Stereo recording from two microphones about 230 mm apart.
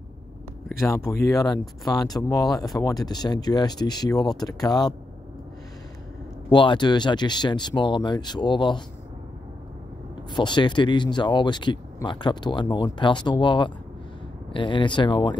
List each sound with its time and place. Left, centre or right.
0.7 s speech: centre
6.5 s speech: centre
10.3 s speech: centre